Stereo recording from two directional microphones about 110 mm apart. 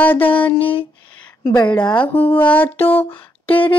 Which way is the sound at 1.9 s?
15° left (ahead or behind).